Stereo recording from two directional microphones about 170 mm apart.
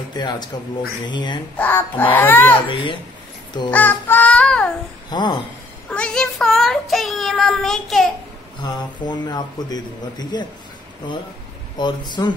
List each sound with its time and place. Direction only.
0.1 s speech: 25° left (ahead or behind)
1.6 s a child's voice: 10° left (ahead or behind)
2.5 s speech: 30° left (ahead or behind)
3.7 s music: 10° left (ahead or behind)
5.1 s speech: 25° left (ahead or behind)
5.9 s child singing: 5° left (ahead or behind)
8.6 s speech: 25° left (ahead or behind)
11.8 s speech: 25° left (ahead or behind)